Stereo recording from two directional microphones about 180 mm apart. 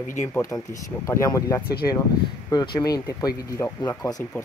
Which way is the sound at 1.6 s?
60° left (ahead or behind).